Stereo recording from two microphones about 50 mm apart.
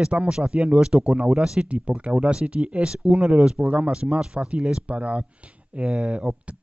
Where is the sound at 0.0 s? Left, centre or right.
Right.